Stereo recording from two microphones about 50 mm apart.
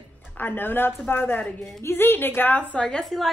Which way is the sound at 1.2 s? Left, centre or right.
Left.